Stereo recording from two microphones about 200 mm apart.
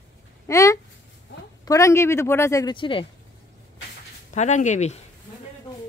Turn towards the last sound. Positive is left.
turn(degrees=35)  # may be behind; listen again after turning